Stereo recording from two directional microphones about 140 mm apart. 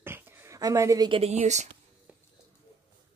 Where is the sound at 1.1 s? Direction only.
45° right (ahead or behind).